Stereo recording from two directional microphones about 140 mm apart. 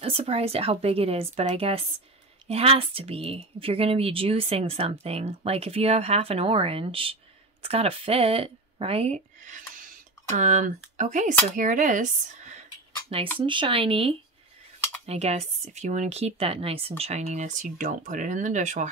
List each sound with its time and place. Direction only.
0.0 s speech: 45° right (ahead or behind)
10.2 s speech: 60° right (ahead or behind)
13.4 s speech: 35° right (ahead or behind); by 18.9 s 60° right (ahead or behind)